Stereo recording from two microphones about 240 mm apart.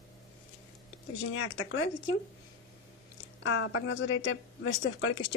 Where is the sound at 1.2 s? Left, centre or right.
Left.